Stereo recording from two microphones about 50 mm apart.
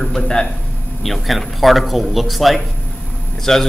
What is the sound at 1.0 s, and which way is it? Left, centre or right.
A man's voice, centre.